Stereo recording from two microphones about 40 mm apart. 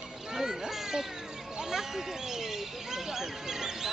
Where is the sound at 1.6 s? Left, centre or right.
Centre.